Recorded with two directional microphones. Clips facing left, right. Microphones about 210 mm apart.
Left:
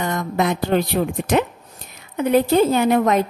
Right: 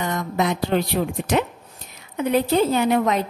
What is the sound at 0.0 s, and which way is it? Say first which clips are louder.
A woman's voice: left 2 dB; 50° left (ahead or behind).